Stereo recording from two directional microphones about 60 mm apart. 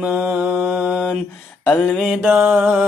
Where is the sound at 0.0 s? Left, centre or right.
Right.